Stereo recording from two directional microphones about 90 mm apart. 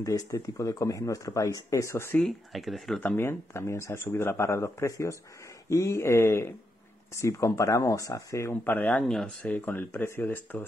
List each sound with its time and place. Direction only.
0.0 s speech: 35° left (ahead or behind)
2.1 s speech: centre (ahead or behind)
3.0 s speech: 25° left (ahead or behind)
9.0 s speech: 5° left (ahead or behind)
9.4 s speech: 20° left (ahead or behind)